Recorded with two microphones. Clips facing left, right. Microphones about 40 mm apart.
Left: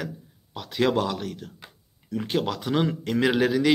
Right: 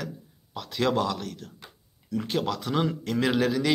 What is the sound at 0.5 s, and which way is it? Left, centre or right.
A man's voice, centre.